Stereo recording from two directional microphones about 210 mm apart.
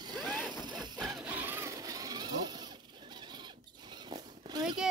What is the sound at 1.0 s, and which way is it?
Vehicle, centre (ahead or behind).